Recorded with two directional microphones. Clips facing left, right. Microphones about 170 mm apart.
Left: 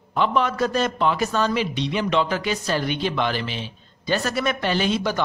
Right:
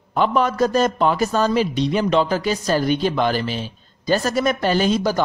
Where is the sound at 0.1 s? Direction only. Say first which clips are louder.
Right 3 dB; 45° right (ahead or behind).